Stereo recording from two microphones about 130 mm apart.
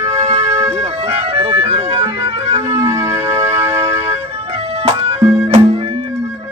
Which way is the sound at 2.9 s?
20° right (ahead or behind).